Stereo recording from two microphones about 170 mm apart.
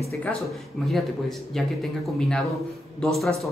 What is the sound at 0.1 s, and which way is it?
Speech, 5° left (ahead or behind).